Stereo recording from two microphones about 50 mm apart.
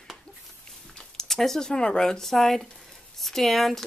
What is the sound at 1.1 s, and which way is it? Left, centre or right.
Speech, centre.